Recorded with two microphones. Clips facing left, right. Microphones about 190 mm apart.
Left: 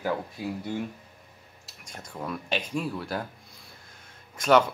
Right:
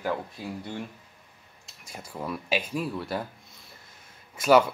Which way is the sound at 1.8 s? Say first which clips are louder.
Right 1 dB; 5° right (ahead or behind).